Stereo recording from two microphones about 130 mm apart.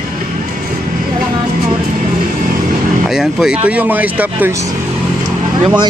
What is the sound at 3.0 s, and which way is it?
Speech, 5° right (ahead or behind).